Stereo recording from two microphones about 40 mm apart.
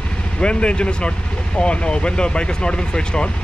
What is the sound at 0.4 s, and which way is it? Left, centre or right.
Speech, left.